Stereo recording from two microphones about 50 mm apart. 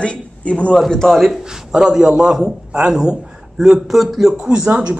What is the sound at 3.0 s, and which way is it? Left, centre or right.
Speech, centre.